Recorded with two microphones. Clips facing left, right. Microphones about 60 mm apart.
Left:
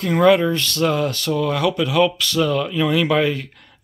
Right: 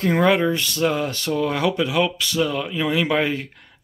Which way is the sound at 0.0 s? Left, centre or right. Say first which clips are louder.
Left 3 dB; right.